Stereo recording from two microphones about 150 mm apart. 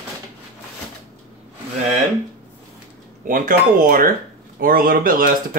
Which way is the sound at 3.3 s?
60° right (ahead or behind).